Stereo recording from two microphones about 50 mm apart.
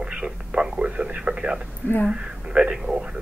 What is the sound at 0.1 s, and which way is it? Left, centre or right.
Speech, right.